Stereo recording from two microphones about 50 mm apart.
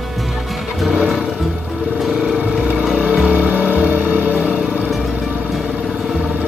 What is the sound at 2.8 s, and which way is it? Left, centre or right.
Vehicle, right.